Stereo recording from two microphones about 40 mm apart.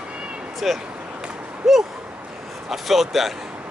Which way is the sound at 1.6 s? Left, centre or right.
Centre.